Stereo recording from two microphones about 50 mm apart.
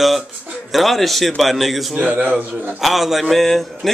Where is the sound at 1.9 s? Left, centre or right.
Right.